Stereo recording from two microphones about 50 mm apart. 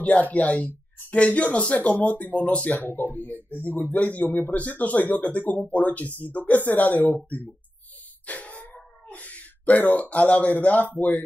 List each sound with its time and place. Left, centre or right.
0.0 s speech: left
2.8 s speech: left
8.3 s cat: left
11.0 s speech: left